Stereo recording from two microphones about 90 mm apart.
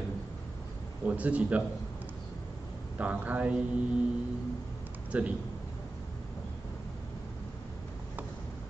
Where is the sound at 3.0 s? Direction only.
15° right (ahead or behind).